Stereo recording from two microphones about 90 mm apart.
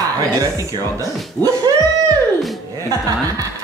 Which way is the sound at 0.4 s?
40° right (ahead or behind).